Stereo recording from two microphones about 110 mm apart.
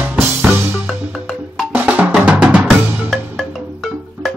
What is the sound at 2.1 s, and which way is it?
Drum, 10° right (ahead or behind).